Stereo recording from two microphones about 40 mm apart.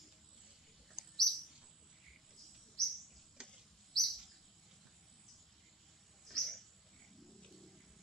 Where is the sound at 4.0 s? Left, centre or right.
Centre.